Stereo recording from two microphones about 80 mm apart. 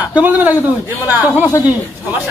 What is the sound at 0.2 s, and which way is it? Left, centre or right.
A man's voice, right.